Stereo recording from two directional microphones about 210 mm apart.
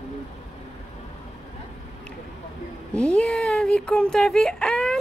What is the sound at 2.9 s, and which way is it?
Speech, 5° left (ahead or behind).